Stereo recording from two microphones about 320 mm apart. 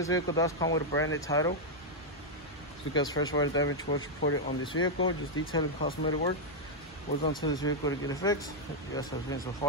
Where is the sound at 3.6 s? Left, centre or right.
Left.